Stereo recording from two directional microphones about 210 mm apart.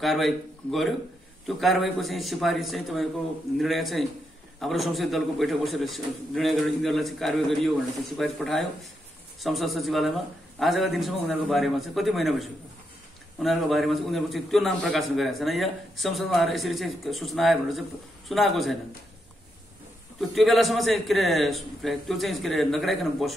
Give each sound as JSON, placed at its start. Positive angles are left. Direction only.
{"t": 0.0, "sound": "a man's voice", "side_deg": 0}
{"t": 20.2, "sound": "a man's voice", "side_deg": 0}